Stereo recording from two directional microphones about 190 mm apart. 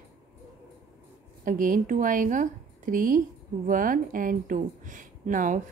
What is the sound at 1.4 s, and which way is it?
A woman's voice, 45° right (ahead or behind).